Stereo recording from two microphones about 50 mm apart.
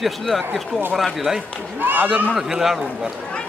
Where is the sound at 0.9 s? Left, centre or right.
Centre.